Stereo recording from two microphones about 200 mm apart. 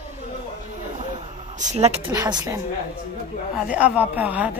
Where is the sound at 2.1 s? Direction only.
20° right (ahead or behind).